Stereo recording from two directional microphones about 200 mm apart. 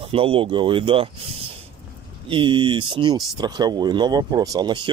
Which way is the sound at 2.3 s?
25° right (ahead or behind).